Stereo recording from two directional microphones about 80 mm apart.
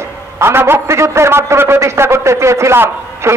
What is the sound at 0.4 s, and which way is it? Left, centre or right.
A man's voice, right.